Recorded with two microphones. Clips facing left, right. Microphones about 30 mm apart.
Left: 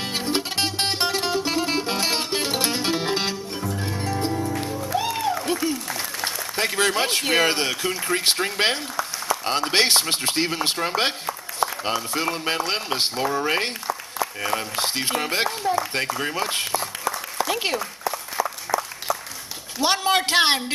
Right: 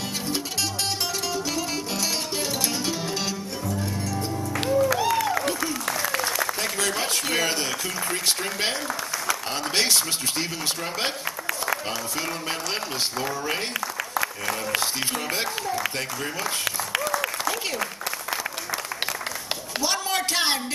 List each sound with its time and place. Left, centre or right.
0.3 s music: left
4.3 s music: left
6.2 s a man's voice: left
19.8 s a man's voice: left